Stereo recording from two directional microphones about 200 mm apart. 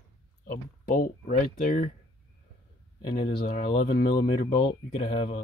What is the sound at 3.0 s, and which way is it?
Speech, 35° left (ahead or behind).